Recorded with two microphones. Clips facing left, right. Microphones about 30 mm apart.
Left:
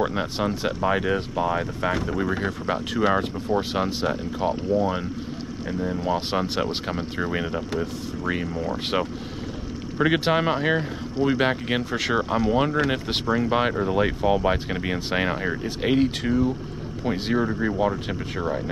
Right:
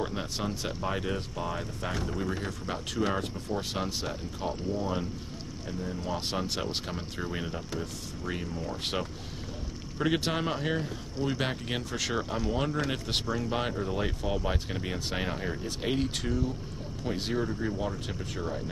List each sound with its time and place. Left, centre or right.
0.0 s speech: left
17.5 s speech: left